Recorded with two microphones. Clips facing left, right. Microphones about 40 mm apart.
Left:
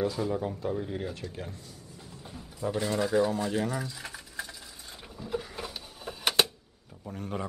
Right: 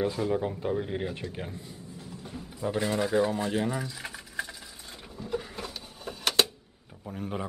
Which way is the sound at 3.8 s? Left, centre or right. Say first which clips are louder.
Right 1 dB; centre.